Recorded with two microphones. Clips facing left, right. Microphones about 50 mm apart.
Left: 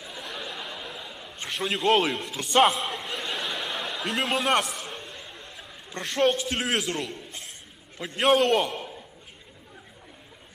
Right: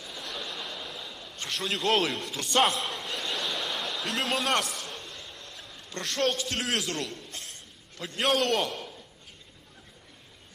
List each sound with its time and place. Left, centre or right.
0.2 s chuckle: centre
4.2 s a sound: centre
6.9 s a man's voice: centre